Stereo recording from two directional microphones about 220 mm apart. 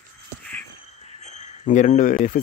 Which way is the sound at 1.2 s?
30° left (ahead or behind).